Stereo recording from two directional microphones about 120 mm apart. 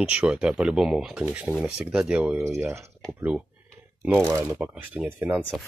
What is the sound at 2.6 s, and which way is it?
Speech, 25° right (ahead or behind).